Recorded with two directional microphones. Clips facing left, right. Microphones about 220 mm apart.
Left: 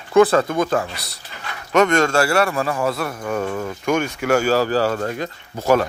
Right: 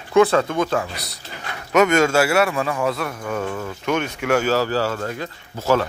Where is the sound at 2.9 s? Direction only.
35° left (ahead or behind).